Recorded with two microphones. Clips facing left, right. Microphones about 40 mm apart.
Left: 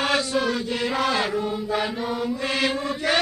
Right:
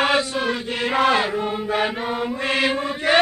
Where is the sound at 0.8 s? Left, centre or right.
Right.